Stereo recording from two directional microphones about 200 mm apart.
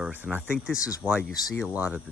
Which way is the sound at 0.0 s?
10° right (ahead or behind).